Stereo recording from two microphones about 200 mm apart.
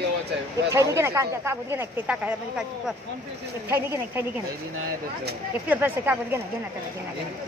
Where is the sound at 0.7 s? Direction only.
15° right (ahead or behind).